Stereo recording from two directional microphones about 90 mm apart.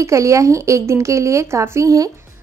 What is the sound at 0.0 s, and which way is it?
A woman's voice, 35° right (ahead or behind).